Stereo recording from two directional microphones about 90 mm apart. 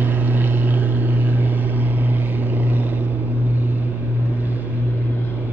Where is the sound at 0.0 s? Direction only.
20° right (ahead or behind).